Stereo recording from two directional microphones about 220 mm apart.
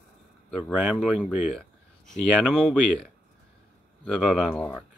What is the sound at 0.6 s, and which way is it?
Speech, 5° right (ahead or behind).